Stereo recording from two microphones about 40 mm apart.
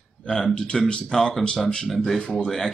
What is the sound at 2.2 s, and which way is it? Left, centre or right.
Speech, left.